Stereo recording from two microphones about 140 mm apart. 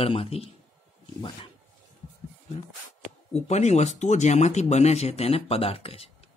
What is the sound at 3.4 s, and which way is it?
Speech, 55° left (ahead or behind).